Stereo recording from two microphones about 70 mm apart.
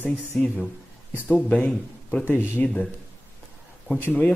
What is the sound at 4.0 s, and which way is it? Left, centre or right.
Speech, left.